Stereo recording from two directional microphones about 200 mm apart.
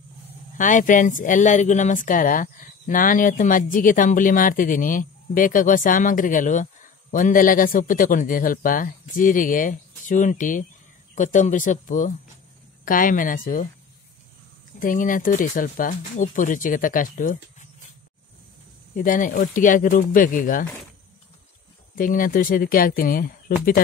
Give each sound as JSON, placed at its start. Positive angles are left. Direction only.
{"t": 0.6, "sound": "speech", "side_deg": 40}
{"t": 14.8, "sound": "speech", "side_deg": 40}
{"t": 18.9, "sound": "speech", "side_deg": 40}
{"t": 21.9, "sound": "speech", "side_deg": 45}